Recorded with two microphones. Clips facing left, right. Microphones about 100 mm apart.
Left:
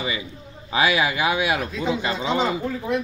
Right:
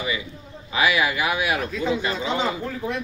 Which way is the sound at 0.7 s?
30° left (ahead or behind).